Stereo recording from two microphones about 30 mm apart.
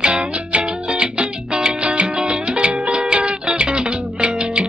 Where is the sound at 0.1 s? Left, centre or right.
Right.